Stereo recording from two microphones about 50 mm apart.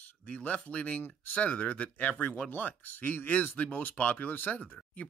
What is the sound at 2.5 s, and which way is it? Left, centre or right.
Speech, left.